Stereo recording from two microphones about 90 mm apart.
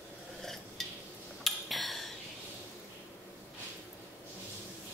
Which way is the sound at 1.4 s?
Centre (ahead or behind).